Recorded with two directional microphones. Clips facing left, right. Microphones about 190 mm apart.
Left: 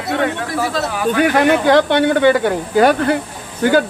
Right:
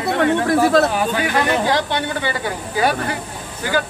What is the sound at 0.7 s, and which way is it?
Speech, 55° right (ahead or behind).